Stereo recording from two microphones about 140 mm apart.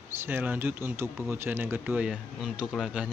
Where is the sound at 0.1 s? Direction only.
15° right (ahead or behind).